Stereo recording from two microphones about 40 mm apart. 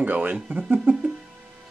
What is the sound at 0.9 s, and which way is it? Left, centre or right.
Music, right.